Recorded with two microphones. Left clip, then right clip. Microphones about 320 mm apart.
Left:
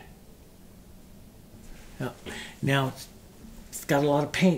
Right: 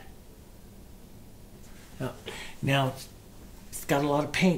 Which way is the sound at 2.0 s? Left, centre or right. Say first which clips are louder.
Left 1 dB; left.